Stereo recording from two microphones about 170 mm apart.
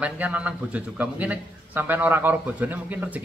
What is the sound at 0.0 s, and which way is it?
A man's voice, 10° right (ahead or behind).